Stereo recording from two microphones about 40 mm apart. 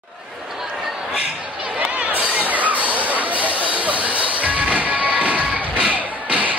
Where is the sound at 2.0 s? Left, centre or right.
Right.